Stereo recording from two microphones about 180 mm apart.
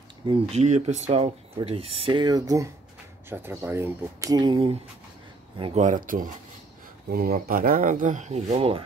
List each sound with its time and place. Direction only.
0.3 s speech: 35° right (ahead or behind)
5.6 s speech: 40° right (ahead or behind)